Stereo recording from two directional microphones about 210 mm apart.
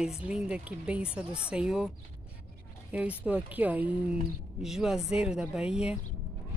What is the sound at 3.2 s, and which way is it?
A woman's voice, 5° right (ahead or behind).